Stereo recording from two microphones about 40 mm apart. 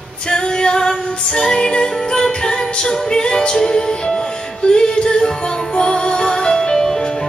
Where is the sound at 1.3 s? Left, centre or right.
Centre.